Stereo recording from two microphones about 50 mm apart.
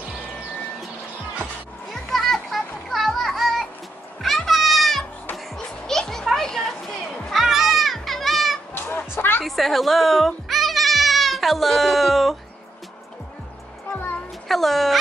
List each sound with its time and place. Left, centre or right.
1.9 s children playing: centre
7.2 s children playing: centre
8.7 s chicken: left
9.4 s music: centre
13.9 s music: left
14.5 s music: centre